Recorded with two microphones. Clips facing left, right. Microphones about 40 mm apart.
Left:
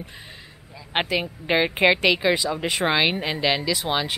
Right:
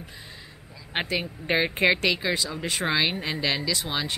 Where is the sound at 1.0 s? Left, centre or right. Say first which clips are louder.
Left 3 dB; centre.